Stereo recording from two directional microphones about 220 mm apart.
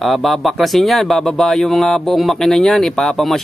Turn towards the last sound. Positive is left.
turn(degrees=0)  # may be behind; listen again after turning